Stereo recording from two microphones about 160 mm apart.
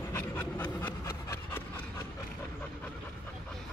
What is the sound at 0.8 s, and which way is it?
Wood, 15° left (ahead or behind).